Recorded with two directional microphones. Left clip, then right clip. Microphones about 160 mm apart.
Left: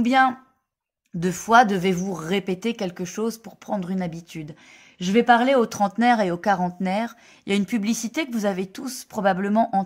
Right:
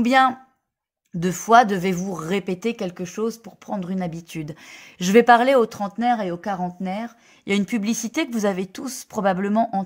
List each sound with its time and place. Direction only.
0.0 s speech: 30° right (ahead or behind)
1.2 s speech: 15° right (ahead or behind); by 5.6 s 35° right (ahead or behind)
5.7 s speech: centre (ahead or behind)
7.4 s speech: 15° right (ahead or behind)